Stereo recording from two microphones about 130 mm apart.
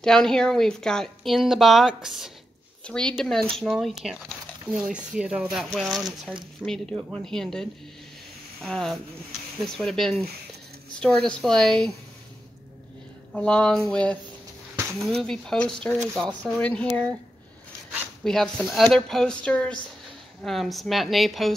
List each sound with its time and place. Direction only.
0.0 s a woman's voice: 5° left (ahead or behind)
8.6 s a woman's voice: 5° left (ahead or behind)
13.3 s speech: 5° left (ahead or behind)
14.8 s a sound: 20° right (ahead or behind)
15.2 s a woman's voice: 5° left (ahead or behind)
18.2 s a woman's voice: 5° left (ahead or behind)